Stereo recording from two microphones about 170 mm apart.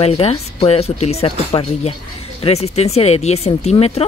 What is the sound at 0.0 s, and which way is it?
A woman's voice, 35° left (ahead or behind).